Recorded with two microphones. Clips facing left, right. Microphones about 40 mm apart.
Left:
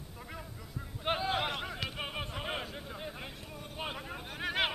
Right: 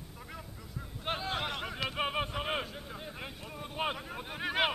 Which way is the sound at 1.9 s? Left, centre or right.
Centre.